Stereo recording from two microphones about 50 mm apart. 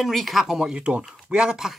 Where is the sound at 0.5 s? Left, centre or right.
Centre.